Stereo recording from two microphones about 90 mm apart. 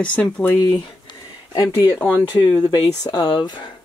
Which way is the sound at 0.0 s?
15° left (ahead or behind).